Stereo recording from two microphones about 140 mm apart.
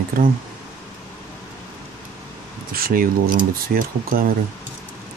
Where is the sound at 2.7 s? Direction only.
90° right.